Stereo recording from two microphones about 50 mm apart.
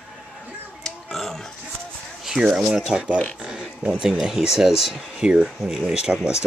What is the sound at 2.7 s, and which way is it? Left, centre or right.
Speech, centre.